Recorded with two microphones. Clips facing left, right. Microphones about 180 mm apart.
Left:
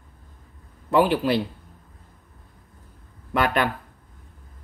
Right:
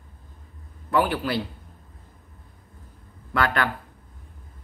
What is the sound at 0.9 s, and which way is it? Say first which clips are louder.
Speech: left 4 dB; 20° left (ahead or behind).